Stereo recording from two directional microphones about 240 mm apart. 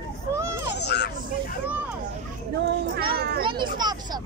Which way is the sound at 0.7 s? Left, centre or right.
Left.